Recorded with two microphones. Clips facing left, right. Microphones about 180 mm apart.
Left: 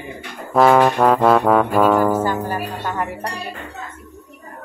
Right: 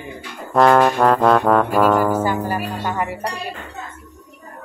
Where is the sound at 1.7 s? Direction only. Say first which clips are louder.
Left 1 dB; 5° right (ahead or behind).